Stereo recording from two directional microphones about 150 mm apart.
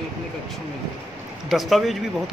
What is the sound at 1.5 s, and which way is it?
Speech, centre (ahead or behind).